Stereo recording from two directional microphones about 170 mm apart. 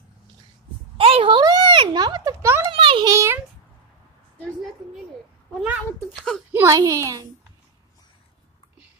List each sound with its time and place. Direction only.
0.9 s a sound: 30° right (ahead or behind)
2.7 s a child's voice: 30° right (ahead or behind)
3.1 s a child's voice: 20° right (ahead or behind)
5.5 s speech: centre (ahead or behind)
6.5 s a child's voice: 15° right (ahead or behind)